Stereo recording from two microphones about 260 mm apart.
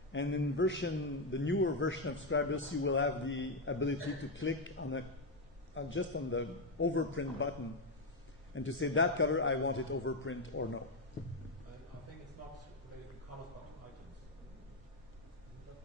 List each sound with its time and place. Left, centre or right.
0.1 s a man's voice: left
8.5 s a man's voice: left